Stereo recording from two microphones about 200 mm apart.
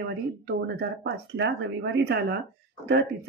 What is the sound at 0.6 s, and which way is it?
Speech, 55° right (ahead or behind).